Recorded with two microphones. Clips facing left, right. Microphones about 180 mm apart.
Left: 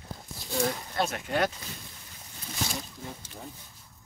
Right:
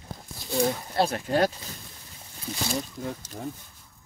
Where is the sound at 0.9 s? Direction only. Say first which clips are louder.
Right 5 dB; 35° right (ahead or behind).